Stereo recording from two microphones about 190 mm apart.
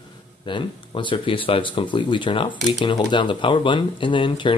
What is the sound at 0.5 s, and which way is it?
Speech, 25° left (ahead or behind).